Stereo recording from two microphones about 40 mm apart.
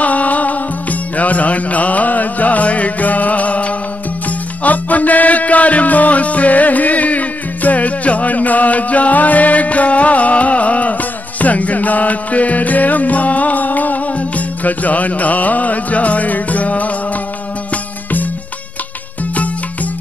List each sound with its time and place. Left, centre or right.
0.0 s music: left